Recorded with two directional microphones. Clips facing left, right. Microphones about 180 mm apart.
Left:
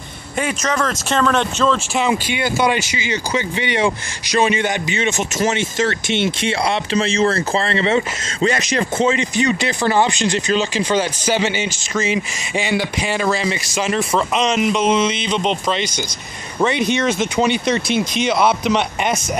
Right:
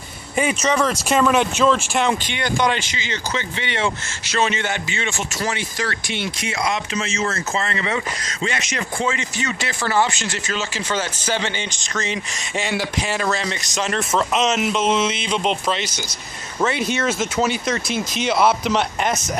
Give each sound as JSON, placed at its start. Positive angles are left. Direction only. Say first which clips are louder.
{"t": 0.4, "sound": "speech", "louder": "right 1 dB", "side_deg": -5}
{"t": 2.0, "sound": "speech", "louder": "left 2 dB", "side_deg": 5}
{"t": 8.9, "sound": "speech", "louder": "left 6 dB", "side_deg": 20}